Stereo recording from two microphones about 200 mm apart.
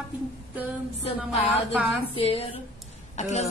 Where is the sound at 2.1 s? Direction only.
30° left (ahead or behind).